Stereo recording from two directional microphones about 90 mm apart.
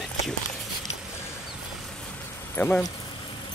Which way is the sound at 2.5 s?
20° left (ahead or behind).